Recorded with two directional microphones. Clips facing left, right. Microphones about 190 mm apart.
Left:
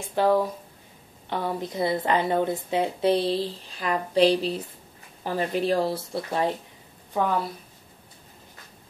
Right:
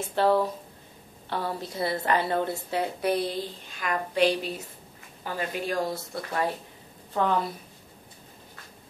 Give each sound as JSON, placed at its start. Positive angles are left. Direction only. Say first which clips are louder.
{"t": 0.1, "sound": "a woman's voice", "louder": "left 2 dB", "side_deg": 15}
{"t": 7.2, "sound": "speech", "louder": "even", "side_deg": 10}